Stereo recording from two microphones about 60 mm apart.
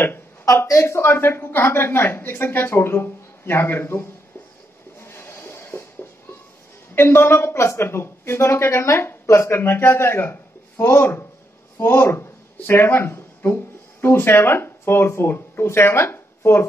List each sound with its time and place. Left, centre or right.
0.0 s a woman's voice: left
5.0 s a sound: left
7.0 s speech: left